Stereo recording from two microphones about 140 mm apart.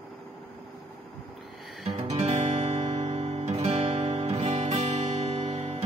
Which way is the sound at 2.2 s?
50° right (ahead or behind).